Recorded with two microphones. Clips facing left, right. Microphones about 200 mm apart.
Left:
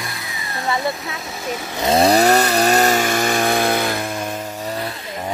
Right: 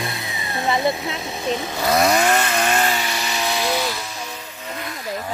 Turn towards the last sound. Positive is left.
turn(degrees=55)  # may be behind; listen again after turning